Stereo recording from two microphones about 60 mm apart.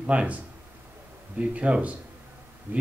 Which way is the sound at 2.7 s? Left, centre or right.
Right.